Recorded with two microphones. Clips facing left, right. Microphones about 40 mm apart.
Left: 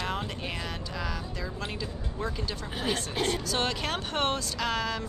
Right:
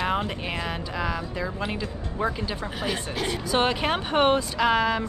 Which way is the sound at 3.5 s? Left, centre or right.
Right.